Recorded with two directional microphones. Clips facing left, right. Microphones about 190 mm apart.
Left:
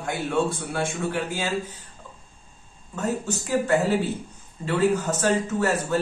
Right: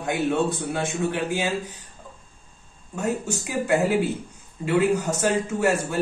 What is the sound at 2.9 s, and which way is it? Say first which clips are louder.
A man's voice: right 1 dB; 10° right (ahead or behind).